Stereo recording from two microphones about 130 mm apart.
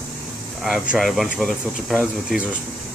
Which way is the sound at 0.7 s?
Centre (ahead or behind).